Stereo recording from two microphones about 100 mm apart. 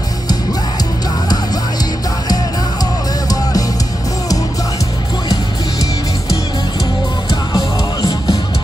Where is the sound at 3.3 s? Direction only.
40° left (ahead or behind).